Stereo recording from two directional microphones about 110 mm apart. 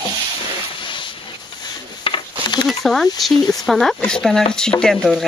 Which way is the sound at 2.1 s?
55° left (ahead or behind).